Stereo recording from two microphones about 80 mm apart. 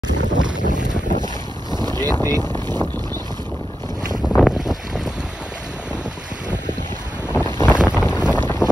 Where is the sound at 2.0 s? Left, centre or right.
Left.